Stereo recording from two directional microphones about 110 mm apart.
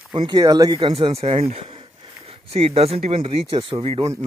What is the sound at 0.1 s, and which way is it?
Speech, 45° right (ahead or behind).